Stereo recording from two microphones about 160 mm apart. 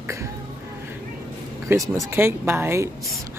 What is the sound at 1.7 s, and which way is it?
Speech, 15° right (ahead or behind).